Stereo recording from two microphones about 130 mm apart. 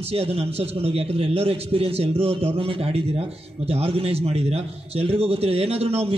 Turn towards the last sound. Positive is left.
turn(degrees=-50)  # may be behind; listen again after turning